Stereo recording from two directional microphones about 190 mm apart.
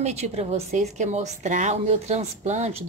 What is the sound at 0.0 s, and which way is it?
A woman's voice, 35° right (ahead or behind).